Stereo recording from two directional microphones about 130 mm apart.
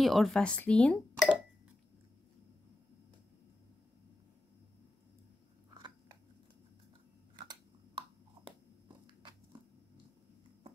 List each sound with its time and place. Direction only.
0.0 s speech: centre (ahead or behind)
5.8 s biting: 35° right (ahead or behind)
8.8 s a sound: 35° right (ahead or behind)